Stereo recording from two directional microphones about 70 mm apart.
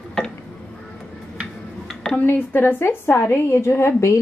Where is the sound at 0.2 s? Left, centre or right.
Centre.